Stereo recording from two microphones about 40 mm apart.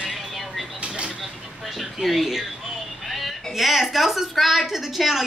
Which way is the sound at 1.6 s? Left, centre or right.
Centre.